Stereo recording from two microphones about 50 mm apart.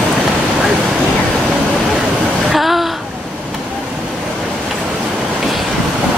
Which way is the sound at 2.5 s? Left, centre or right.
Centre.